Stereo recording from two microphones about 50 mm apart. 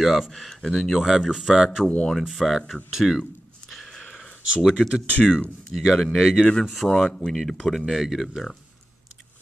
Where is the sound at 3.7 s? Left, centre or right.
Centre.